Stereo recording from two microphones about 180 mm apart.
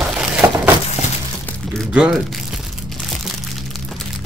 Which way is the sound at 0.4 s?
15° right (ahead or behind).